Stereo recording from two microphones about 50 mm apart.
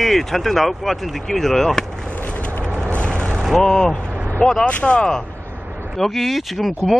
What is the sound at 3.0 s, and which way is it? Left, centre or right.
Vehicle, left.